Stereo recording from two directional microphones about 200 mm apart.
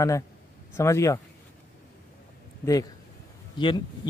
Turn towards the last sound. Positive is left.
turn(degrees=20)  # may be behind; listen again after turning